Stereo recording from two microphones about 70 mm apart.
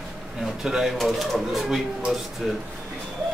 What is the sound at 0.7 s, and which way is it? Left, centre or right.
Speech, centre.